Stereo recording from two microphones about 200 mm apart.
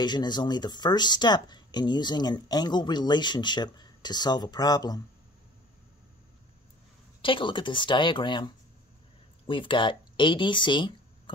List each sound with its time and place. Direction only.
0.0 s speech: 20° left (ahead or behind)
7.2 s speech: 25° left (ahead or behind)